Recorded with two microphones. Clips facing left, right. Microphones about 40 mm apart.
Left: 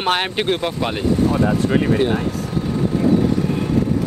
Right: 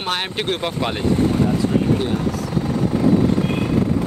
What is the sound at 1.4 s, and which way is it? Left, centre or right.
Speech, left.